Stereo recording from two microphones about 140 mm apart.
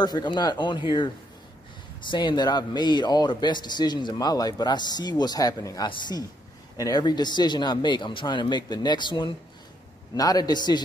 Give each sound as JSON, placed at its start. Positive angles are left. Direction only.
{"t": 0.0, "sound": "a man's voice", "side_deg": 30}